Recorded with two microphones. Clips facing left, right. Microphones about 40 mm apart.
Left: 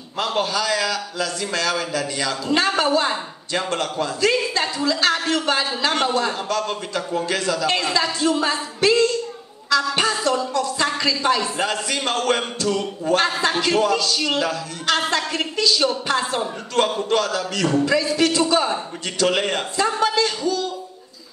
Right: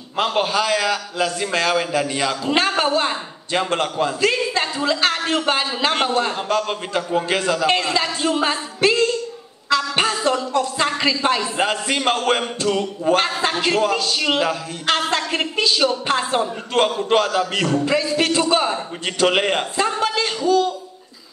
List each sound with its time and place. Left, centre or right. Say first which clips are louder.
0.2 s a man's voice: right 3 dB; right
9.7 s a sound: even; right
10.2 s a man's voice: right 1 dB; right